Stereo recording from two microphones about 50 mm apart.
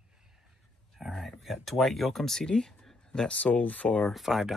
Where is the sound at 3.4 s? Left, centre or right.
Left.